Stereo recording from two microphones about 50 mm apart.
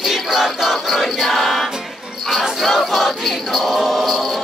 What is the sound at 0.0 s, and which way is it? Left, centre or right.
Music, centre.